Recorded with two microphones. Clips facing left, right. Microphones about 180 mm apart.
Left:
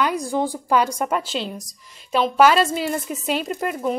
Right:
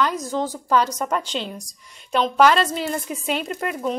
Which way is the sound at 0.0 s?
10° left (ahead or behind).